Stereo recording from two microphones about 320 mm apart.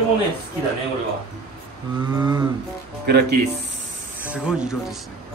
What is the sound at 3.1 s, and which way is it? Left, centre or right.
Speech, right.